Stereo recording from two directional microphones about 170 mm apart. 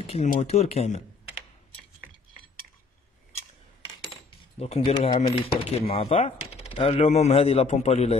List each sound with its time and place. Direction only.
0.0 s a sound: 35° left (ahead or behind)
0.3 s speech: 40° left (ahead or behind)
4.6 s speech: 35° left (ahead or behind)